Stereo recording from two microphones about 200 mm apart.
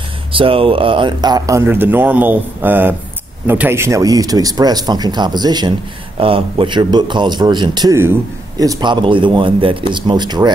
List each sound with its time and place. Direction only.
0.3 s speech: 25° right (ahead or behind)